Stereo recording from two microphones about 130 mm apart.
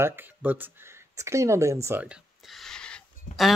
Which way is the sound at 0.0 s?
15° right (ahead or behind).